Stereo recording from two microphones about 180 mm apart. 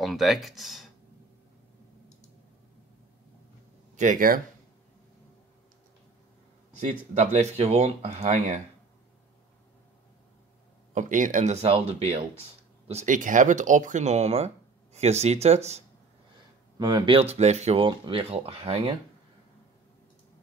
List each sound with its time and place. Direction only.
0.0 s speech: centre (ahead or behind)
3.9 s speech: 45° right (ahead or behind)
7.2 s speech: 40° right (ahead or behind)
11.0 s speech: 45° right (ahead or behind)
16.7 s speech: 20° right (ahead or behind)